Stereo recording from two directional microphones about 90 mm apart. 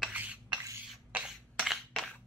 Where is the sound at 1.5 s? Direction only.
Centre (ahead or behind).